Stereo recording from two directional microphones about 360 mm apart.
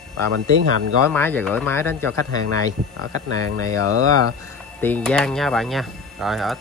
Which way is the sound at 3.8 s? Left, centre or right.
Right.